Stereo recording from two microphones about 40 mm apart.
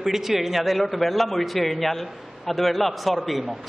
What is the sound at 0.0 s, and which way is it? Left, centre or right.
A man's voice, centre.